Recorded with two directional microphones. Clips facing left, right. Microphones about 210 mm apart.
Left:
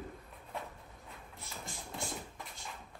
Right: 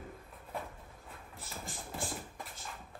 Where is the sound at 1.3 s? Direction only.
Centre (ahead or behind).